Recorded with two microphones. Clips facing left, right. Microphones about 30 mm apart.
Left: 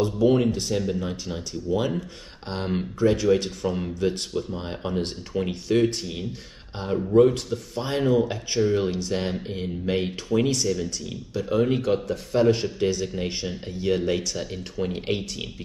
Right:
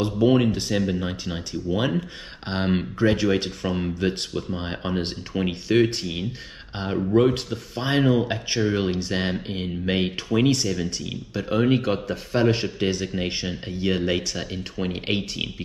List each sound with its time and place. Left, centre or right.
0.2 s speech: right